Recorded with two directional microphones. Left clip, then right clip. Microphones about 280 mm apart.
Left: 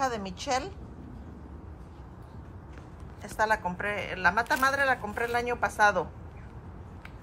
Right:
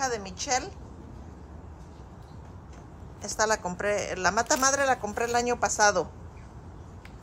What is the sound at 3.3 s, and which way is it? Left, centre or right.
A woman's voice, centre.